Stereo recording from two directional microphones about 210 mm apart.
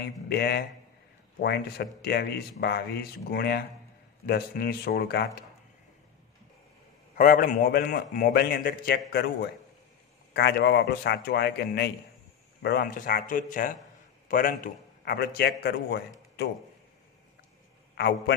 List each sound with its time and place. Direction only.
0.0 s a man's voice: 50° left (ahead or behind)
7.2 s a man's voice: 40° left (ahead or behind)
17.9 s a man's voice: 50° left (ahead or behind)